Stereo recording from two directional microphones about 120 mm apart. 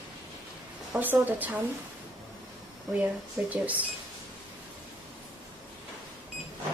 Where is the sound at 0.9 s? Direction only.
15° right (ahead or behind).